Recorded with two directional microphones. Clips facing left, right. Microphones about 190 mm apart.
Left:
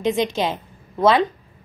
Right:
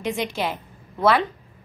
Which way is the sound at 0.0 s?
20° left (ahead or behind).